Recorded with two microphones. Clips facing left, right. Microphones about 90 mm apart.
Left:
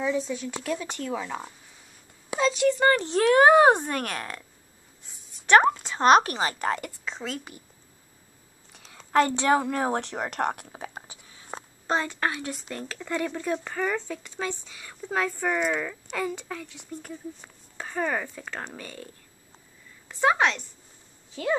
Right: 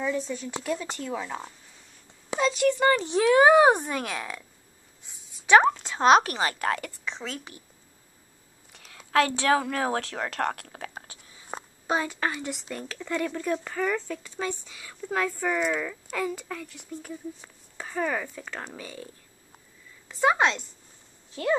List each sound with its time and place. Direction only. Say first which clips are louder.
0.0 s speech: left 2 dB; 5° left (ahead or behind)
2.8 s a woman's voice: left 1 dB; 10° right (ahead or behind)
3.2 s speech: even; 40° left (ahead or behind)
3.8 s speech: left 1 dB; centre (ahead or behind)
8.7 s a sound: left 1 dB; centre (ahead or behind)
9.2 s speech: left 1 dB; 15° left (ahead or behind)
11.9 s a woman's voice: left 1 dB; 10° right (ahead or behind)
20.1 s a woman's voice: even; centre (ahead or behind)
20.3 s a woman's voice: even; 15° right (ahead or behind)